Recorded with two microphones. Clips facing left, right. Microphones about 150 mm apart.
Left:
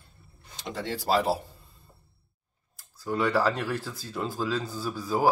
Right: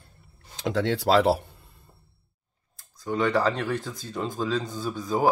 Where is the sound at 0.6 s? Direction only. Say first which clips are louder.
Right 8 dB; 90° right; by 1.3 s 70° right (ahead or behind).